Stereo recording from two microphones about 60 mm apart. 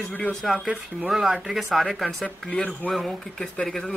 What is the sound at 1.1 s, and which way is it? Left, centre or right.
Speech, centre.